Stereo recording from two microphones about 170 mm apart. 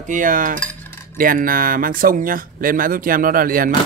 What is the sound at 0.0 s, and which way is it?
Speech, 50° right (ahead or behind).